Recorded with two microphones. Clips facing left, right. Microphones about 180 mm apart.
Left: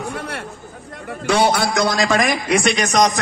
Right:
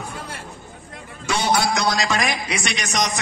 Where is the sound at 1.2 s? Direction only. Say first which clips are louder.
Left 4 dB; 60° left (ahead or behind).